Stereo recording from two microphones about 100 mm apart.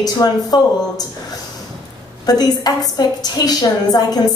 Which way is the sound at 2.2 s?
40° left (ahead or behind).